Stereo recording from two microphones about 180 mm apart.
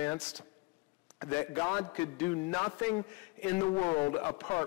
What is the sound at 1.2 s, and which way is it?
A man's voice, 15° left (ahead or behind).